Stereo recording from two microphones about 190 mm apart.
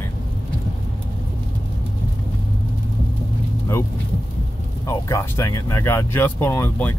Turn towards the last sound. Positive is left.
turn(degrees=10)  # may be behind; listen again after turning